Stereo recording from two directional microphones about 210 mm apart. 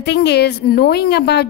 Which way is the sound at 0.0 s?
50° left (ahead or behind).